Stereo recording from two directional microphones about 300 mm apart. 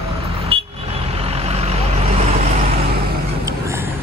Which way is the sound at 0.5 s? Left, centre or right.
Centre.